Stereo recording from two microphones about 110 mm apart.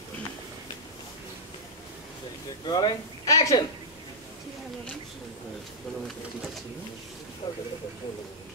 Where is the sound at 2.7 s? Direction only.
35° left (ahead or behind).